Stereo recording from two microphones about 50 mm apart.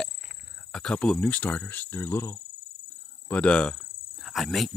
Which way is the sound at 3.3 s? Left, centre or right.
Left.